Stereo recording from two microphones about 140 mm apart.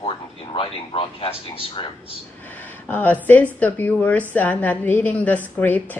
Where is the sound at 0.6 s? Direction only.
40° left (ahead or behind).